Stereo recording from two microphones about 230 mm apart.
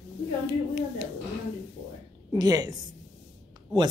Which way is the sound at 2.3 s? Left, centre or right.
Centre.